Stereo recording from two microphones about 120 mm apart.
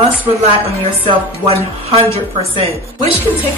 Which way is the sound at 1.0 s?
55° right (ahead or behind).